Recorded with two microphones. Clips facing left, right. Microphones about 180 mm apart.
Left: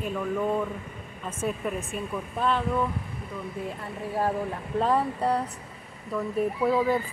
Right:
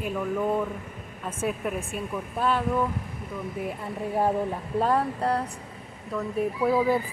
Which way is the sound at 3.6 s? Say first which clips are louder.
Right 3 dB; 15° right (ahead or behind).